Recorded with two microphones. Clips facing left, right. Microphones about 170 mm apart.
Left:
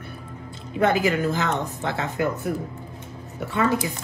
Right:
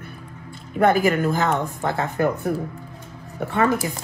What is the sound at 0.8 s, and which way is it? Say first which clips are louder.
Speech: right 3 dB; 50° right (ahead or behind).